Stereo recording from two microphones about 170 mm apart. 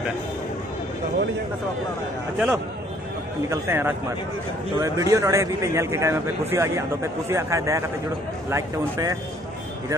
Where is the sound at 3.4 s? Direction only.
15° right (ahead or behind).